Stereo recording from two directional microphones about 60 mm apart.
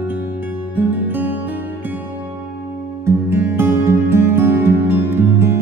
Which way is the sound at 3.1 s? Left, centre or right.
Right.